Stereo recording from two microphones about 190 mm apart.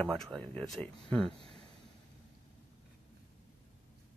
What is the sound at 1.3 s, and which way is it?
Speech, 30° right (ahead or behind).